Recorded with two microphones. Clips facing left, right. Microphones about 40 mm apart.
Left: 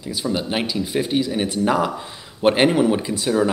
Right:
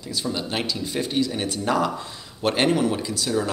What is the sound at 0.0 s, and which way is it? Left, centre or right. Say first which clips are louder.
Speech: left 4 dB; centre.